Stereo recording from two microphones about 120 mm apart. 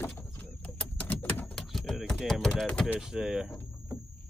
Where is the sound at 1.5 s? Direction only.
5° left (ahead or behind).